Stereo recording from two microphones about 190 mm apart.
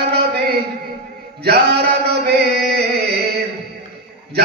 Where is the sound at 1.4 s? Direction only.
55° right (ahead or behind).